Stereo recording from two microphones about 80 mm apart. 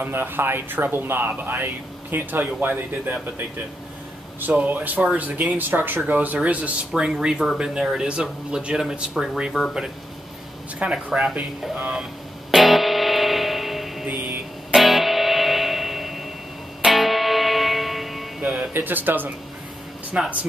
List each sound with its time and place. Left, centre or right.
0.0 s speech: right
12.0 s music: centre
18.4 s music: centre
18.7 s speech: right